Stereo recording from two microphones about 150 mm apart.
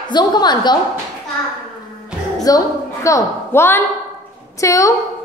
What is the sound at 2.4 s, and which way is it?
A woman's voice, 25° left (ahead or behind).